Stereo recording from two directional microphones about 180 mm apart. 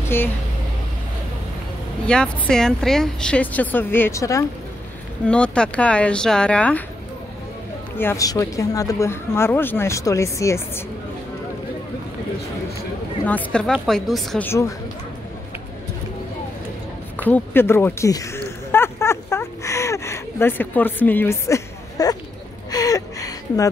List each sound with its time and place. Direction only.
0.0 s speech: 10° left (ahead or behind)
2.0 s speech: 5° left (ahead or behind)
5.2 s speech: 5° left (ahead or behind)
8.0 s speech: 15° left (ahead or behind)
13.2 s a woman's voice: 10° left (ahead or behind)
14.4 s speech: 15° left (ahead or behind)
17.2 s a sound: 10° left (ahead or behind)